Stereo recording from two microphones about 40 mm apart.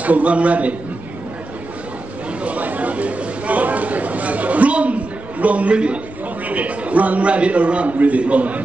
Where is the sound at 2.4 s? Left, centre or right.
Right.